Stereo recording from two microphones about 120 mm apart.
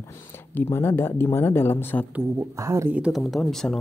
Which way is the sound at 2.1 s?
25° right (ahead or behind).